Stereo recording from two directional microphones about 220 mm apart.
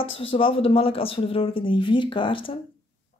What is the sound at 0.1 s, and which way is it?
Speech, 25° left (ahead or behind).